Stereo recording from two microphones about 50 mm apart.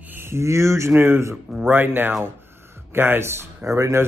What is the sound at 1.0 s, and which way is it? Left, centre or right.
Speech, right.